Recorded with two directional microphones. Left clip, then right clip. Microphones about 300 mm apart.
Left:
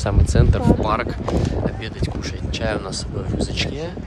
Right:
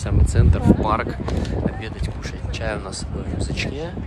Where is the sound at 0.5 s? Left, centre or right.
Centre.